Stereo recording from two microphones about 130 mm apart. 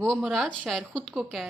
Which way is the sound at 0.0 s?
Centre (ahead or behind).